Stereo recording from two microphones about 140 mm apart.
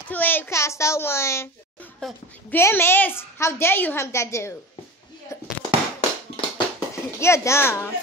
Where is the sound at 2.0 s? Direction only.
5° left (ahead or behind).